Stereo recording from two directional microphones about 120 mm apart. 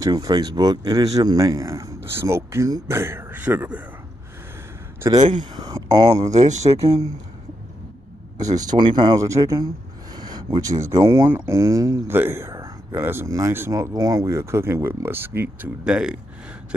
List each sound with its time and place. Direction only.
0.0 s speech: 35° right (ahead or behind); by 3.8 s 10° right (ahead or behind)
5.3 s speech: 40° right (ahead or behind)
6.3 s speech: 70° right (ahead or behind)
6.8 s speech: 30° right (ahead or behind)
8.5 s speech: 40° right (ahead or behind)
9.2 s speech: 25° right (ahead or behind)
11.2 s speech: 15° right (ahead or behind)
11.5 s speech: 25° right (ahead or behind)
15.8 s speech: 5° right (ahead or behind)